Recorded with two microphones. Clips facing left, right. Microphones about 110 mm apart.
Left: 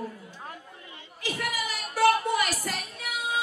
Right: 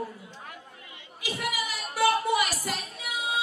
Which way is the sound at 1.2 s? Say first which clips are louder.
Even; 10° right (ahead or behind).